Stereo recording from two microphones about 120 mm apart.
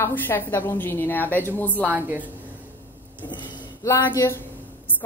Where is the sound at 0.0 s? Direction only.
20° left (ahead or behind).